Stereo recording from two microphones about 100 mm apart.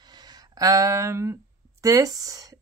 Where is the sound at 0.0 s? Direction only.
45° right (ahead or behind).